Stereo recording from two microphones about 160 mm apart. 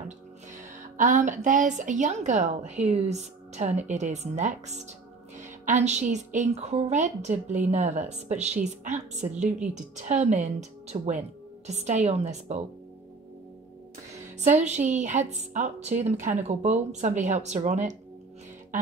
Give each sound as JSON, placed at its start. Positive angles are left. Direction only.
{"t": 0.9, "sound": "a woman's voice", "side_deg": -50}
{"t": 14.4, "sound": "a woman's voice", "side_deg": -45}